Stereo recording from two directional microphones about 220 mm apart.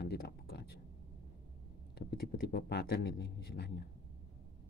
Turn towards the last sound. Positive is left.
turn(degrees=50)  # may be behind; listen again after turning